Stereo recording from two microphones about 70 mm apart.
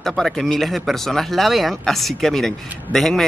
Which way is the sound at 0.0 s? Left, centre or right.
Centre.